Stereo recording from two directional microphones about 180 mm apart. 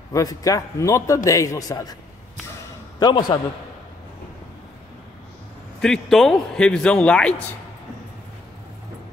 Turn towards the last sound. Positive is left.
turn(degrees=5)  # may be behind; listen again after turning